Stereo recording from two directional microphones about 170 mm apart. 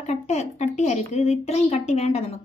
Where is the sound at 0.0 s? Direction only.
40° left (ahead or behind).